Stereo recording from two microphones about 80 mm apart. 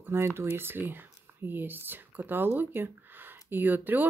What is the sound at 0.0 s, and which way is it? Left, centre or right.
Speech, right.